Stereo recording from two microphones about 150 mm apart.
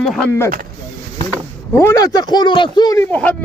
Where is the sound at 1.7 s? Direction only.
20° left (ahead or behind).